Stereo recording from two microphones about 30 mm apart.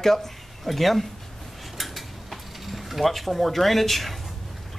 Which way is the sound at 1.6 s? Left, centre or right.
Centre.